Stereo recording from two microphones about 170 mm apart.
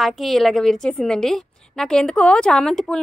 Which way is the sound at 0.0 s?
Centre (ahead or behind).